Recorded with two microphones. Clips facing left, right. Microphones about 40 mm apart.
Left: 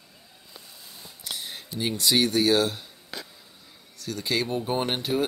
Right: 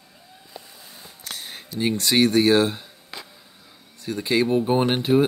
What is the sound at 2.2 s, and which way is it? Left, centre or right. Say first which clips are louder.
Speech: right 7 dB; right.